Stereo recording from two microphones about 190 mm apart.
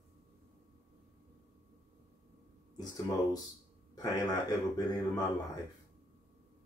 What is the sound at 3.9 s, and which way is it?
Speech, 20° left (ahead or behind).